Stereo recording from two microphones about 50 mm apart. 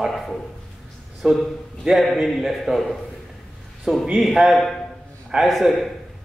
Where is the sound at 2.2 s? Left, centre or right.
Centre.